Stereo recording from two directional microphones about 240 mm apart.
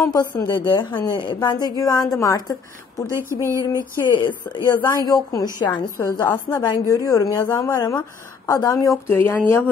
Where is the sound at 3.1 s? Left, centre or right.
Centre.